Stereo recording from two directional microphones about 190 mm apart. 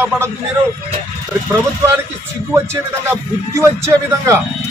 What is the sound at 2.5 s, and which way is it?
A man's voice, 15° right (ahead or behind).